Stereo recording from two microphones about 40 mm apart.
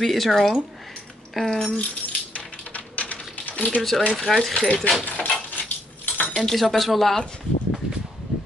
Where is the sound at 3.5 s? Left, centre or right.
Left.